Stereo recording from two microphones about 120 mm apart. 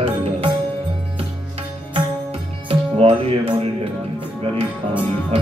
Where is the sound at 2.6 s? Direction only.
55° right (ahead or behind).